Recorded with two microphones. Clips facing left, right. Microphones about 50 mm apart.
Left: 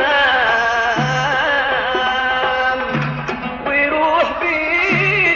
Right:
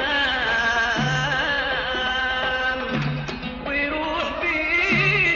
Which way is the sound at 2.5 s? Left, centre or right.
Left.